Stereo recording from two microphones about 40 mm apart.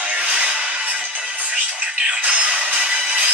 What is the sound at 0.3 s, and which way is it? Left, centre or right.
Music, right.